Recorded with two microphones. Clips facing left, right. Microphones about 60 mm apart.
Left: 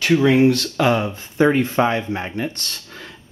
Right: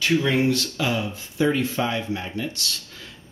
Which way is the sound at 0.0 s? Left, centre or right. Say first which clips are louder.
Left 6 dB; left.